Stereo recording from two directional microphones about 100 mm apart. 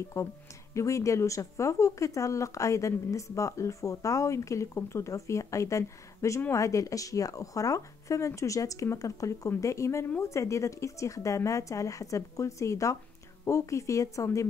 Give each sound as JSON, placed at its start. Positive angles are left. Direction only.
{"t": 0.2, "sound": "speech", "side_deg": 30}